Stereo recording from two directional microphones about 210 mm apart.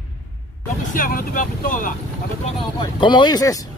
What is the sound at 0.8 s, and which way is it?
Speech, 40° left (ahead or behind).